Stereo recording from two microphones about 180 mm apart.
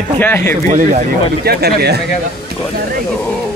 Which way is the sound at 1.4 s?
60° right (ahead or behind).